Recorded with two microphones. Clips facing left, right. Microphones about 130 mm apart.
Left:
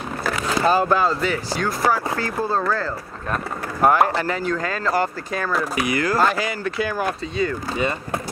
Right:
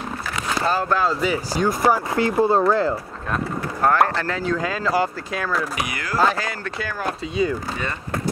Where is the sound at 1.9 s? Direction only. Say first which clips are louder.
Right 2 dB; 20° right (ahead or behind).